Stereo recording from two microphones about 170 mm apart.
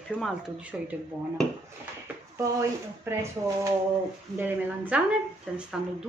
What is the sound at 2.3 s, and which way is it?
Speech, 15° right (ahead or behind).